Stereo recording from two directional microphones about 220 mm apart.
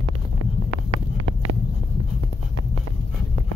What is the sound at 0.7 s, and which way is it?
Wind noise, 75° right (ahead or behind).